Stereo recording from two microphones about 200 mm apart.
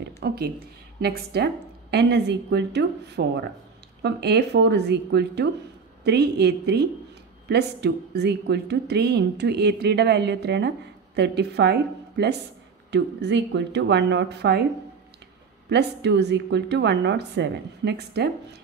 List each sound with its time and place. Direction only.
0.0 s a sound: 55° right (ahead or behind)
1.0 s a woman's voice: 50° right (ahead or behind)
15.7 s a woman's voice: 55° right (ahead or behind)